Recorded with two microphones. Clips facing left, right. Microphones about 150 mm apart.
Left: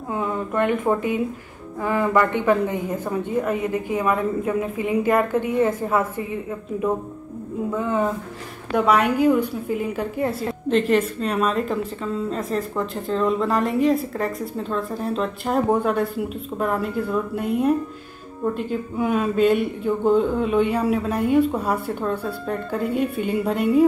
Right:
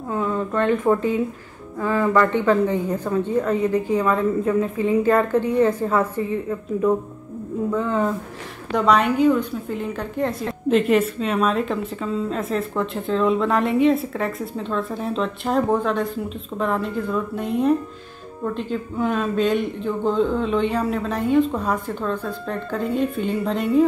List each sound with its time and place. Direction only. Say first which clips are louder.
0.1 s a woman's voice: right 1 dB; 15° left (ahead or behind)
7.7 s a woman's voice: right 1 dB; 15° left (ahead or behind)
8.7 s a woman's voice: even; 5° left (ahead or behind)
10.9 s a woman's voice: right 1 dB; 5° right (ahead or behind)